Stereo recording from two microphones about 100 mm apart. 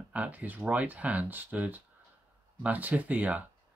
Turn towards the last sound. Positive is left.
turn(degrees=-15)  # may be behind; listen again after turning